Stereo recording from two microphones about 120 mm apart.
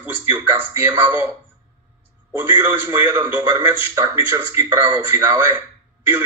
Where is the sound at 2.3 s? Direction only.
20° right (ahead or behind).